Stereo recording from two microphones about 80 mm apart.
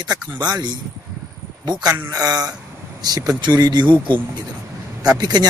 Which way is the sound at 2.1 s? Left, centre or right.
Right.